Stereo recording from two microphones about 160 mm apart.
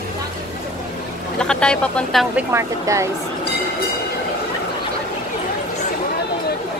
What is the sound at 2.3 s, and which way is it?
Speech, 15° right (ahead or behind).